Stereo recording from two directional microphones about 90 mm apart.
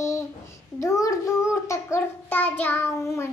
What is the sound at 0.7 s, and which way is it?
Child singing, 35° left (ahead or behind).